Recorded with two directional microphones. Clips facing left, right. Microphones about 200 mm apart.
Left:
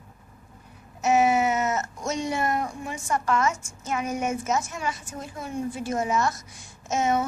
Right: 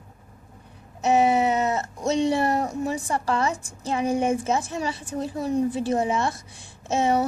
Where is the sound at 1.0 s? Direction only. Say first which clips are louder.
Right 1 dB; 35° right (ahead or behind).